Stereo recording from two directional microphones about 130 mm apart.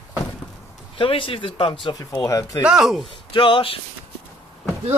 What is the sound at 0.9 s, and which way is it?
Speech, 40° left (ahead or behind).